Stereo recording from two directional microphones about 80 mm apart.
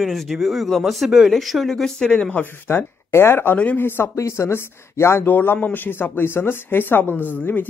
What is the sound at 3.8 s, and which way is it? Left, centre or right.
Speech, left.